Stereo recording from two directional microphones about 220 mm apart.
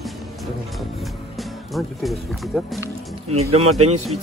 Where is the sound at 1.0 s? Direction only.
Centre (ahead or behind).